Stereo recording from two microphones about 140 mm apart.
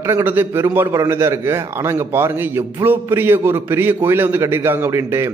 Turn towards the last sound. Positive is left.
turn(degrees=-20)  # may be behind; listen again after turning